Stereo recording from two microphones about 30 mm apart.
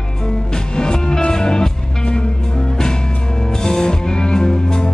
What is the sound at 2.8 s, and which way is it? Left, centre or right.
Music, left.